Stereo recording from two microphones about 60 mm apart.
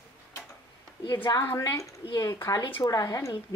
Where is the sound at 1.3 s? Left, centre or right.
Left.